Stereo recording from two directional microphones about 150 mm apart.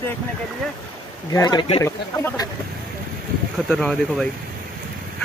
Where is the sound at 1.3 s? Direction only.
30° left (ahead or behind).